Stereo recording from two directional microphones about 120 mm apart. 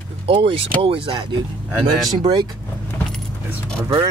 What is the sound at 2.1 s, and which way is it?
Speech, 35° right (ahead or behind).